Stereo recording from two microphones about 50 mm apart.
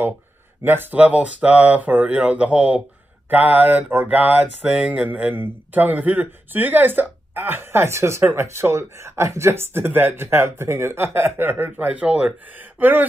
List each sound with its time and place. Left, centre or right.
0.6 s speech: right
0.9 s speech: right
4.1 s speech: right
5.3 s speech: right
7.8 s speech: right
11.9 s speech: right
12.7 s gasp: right